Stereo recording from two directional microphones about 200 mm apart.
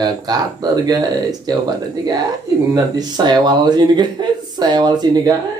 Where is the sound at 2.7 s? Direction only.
20° right (ahead or behind).